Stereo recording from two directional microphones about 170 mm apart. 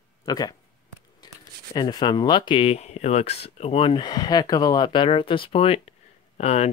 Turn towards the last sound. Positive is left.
turn(degrees=40)  # may be behind; listen again after turning